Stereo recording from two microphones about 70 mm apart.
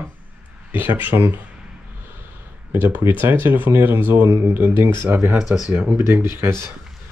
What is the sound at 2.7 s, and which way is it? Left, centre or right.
Speech, right.